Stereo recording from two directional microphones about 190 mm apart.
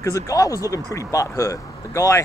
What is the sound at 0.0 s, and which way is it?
Speech, 15° left (ahead or behind).